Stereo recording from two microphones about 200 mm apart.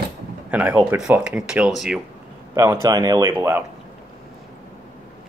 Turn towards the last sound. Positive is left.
turn(degrees=-10)  # may be behind; listen again after turning